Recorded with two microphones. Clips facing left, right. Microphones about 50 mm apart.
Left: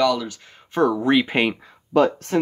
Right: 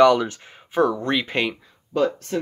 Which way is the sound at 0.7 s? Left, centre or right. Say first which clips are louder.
Left 2 dB; centre.